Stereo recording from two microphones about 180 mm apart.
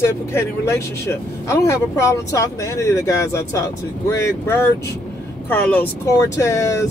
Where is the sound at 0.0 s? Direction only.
15° left (ahead or behind).